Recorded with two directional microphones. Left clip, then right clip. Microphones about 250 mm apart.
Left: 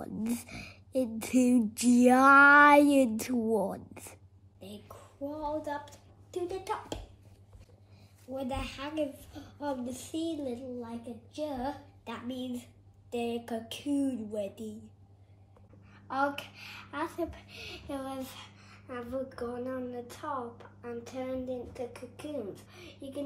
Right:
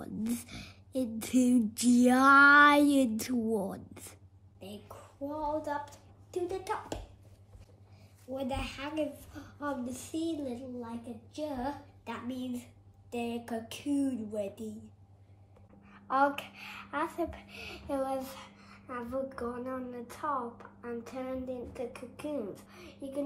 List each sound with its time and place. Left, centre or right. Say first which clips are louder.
0.0 s a sound: left 1 dB; centre
1.1 s a woman's voice: even; centre
8.3 s speech: even; centre
15.9 s speech: right 3 dB; centre